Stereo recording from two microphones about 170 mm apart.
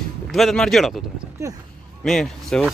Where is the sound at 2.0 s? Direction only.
Centre (ahead or behind).